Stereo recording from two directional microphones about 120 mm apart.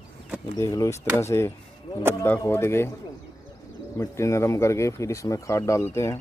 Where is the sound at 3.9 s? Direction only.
25° left (ahead or behind).